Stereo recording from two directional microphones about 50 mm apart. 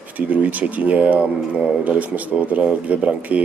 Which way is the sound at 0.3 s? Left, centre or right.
Right.